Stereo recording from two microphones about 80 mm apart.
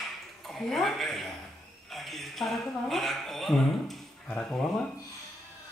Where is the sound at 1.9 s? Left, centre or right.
Centre.